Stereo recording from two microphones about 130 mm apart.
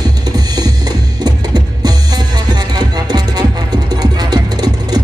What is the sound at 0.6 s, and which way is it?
Music, 30° right (ahead or behind).